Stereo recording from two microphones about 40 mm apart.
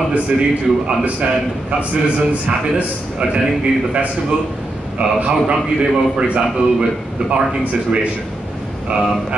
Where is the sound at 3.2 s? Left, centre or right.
Right.